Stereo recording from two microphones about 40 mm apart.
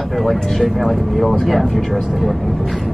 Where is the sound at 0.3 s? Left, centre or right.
Centre.